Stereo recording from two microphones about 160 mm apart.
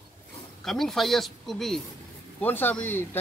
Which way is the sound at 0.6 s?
Centre (ahead or behind).